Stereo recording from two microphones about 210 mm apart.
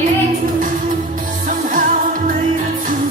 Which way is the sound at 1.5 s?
40° right (ahead or behind).